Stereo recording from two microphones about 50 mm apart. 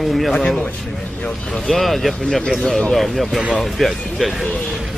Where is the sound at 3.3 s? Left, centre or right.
Centre.